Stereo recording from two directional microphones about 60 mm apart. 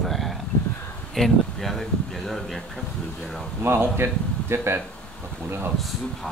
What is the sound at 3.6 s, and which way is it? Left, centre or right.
Speech, right.